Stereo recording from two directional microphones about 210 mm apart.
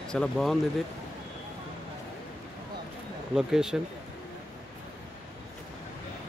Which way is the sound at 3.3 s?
5° right (ahead or behind).